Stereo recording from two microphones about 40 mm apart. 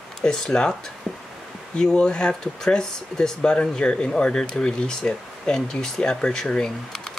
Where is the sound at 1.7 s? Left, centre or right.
Centre.